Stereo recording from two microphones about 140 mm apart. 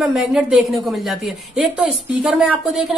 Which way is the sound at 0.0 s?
5° right (ahead or behind).